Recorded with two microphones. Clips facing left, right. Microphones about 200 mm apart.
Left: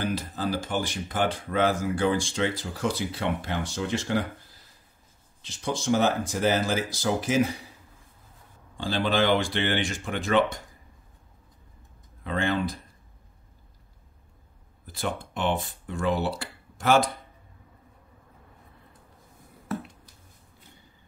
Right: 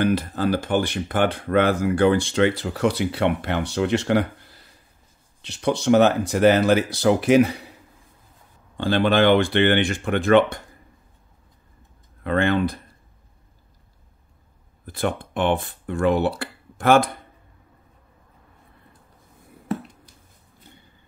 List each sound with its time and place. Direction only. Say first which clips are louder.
0.0 s speech: right 8 dB; 60° right (ahead or behind)
8.7 s speech: right 7 dB; 60° right (ahead or behind)
12.2 s speech: right 6 dB; 60° right (ahead or behind)
14.9 s speech: right 6 dB; 55° right (ahead or behind)